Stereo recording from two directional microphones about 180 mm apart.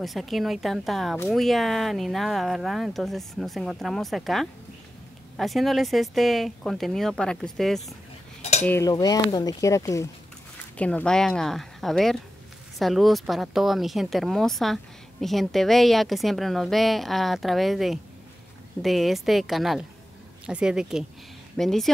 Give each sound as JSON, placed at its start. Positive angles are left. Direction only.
{"t": 0.0, "sound": "speech", "side_deg": 0}
{"t": 8.4, "sound": "cutlery", "side_deg": 40}
{"t": 8.6, "sound": "cutlery", "side_deg": 15}
{"t": 10.8, "sound": "speech", "side_deg": 5}